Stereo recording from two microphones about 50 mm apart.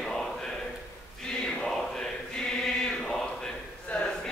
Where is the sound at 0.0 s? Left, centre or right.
Centre.